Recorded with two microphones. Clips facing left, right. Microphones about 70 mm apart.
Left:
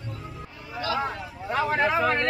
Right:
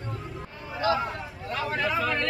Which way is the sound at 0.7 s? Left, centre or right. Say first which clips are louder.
Right 3 dB; right.